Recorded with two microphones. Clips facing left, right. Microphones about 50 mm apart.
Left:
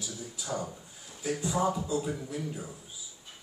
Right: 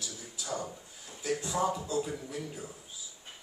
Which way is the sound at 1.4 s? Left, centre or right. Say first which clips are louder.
Left 4 dB; centre.